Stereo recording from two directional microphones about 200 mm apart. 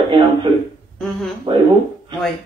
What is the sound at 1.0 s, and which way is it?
Speech, centre (ahead or behind).